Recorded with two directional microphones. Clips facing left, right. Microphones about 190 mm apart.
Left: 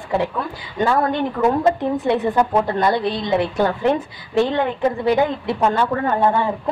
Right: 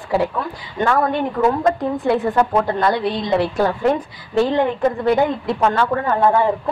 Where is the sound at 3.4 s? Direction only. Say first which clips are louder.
Right 1 dB; centre (ahead or behind).